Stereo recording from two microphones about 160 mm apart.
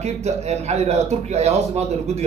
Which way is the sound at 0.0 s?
45° right (ahead or behind).